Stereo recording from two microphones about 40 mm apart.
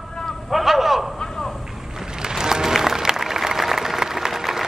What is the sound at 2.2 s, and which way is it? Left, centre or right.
Applause, centre.